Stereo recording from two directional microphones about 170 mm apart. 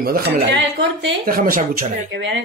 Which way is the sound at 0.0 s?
75° right (ahead or behind).